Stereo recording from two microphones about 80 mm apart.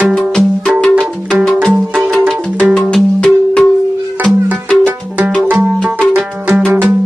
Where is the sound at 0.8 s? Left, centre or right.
Centre.